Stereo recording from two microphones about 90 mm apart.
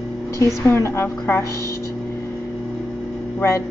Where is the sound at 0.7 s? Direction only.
30° left (ahead or behind).